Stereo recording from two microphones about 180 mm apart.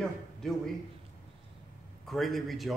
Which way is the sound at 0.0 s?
Centre (ahead or behind).